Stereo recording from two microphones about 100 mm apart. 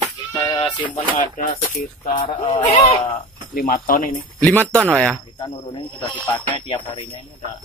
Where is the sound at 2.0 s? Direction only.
90° left.